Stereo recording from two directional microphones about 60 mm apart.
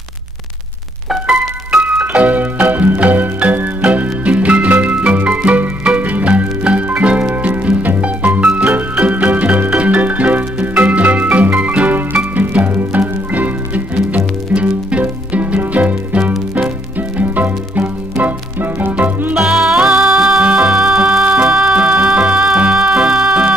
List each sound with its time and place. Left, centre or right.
1.1 s music: centre
2.2 s music: right
19.3 s music: centre
21.5 s music: centre